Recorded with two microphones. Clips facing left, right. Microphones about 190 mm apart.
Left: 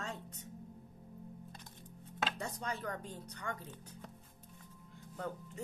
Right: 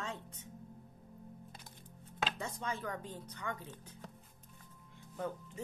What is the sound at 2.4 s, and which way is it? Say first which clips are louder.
Speech: even; 40° left (ahead or behind).